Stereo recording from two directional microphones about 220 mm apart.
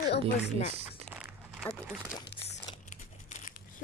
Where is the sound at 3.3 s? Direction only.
35° left (ahead or behind).